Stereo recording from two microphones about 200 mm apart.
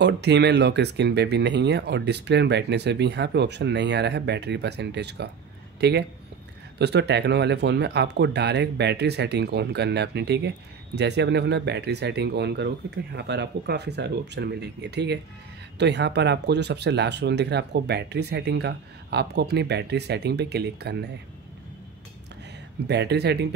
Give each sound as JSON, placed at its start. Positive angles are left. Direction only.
{"t": 0.0, "sound": "speech", "side_deg": -60}
{"t": 22.8, "sound": "speech", "side_deg": -55}